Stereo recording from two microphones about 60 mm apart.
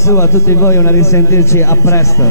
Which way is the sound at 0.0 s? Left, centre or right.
Left.